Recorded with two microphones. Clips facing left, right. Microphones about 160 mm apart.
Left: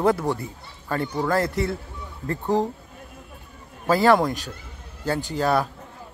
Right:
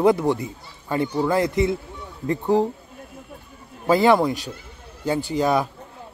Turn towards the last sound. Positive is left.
turn(degrees=-15)  # may be behind; listen again after turning